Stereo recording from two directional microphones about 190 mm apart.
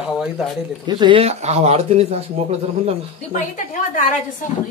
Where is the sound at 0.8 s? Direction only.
25° right (ahead or behind).